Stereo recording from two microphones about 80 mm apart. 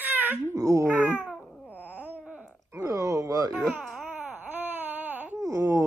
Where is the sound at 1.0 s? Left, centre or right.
Right.